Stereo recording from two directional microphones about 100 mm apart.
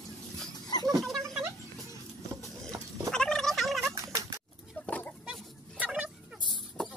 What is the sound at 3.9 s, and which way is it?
Cat, 35° right (ahead or behind).